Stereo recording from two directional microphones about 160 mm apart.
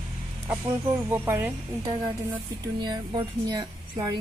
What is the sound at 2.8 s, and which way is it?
Speech, 25° right (ahead or behind).